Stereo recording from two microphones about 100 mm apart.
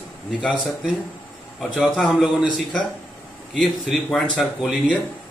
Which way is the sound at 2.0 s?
Centre (ahead or behind).